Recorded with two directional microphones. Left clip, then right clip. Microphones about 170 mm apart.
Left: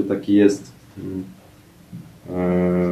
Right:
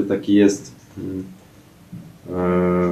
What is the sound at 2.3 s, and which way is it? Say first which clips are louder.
Music: right 2 dB; centre (ahead or behind).